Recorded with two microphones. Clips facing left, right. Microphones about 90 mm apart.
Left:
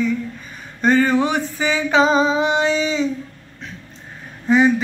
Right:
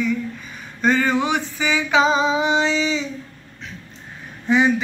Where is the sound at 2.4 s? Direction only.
45° left (ahead or behind).